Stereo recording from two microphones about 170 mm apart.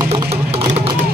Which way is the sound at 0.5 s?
35° right (ahead or behind).